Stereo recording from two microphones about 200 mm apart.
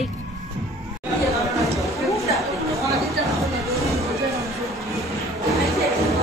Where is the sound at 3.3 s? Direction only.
15° right (ahead or behind).